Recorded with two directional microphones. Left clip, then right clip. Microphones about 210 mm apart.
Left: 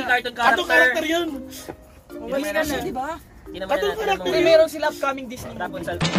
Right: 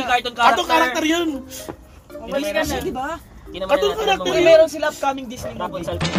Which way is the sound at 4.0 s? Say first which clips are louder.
Right 3 dB; 30° right (ahead or behind).